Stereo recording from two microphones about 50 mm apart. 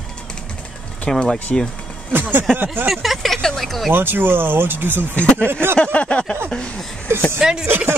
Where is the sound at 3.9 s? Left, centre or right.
Right.